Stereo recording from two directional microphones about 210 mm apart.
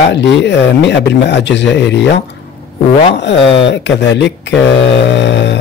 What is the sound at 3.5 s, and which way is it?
Speech, 55° left (ahead or behind).